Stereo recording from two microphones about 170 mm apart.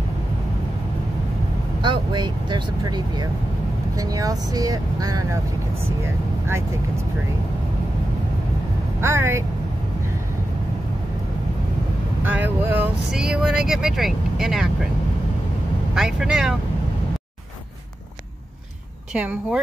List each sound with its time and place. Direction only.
1.8 s speech: 25° right (ahead or behind)
9.0 s speech: 15° right (ahead or behind)
12.2 s speech: 10° right (ahead or behind)
15.9 s speech: centre (ahead or behind)
19.1 s speech: 10° right (ahead or behind)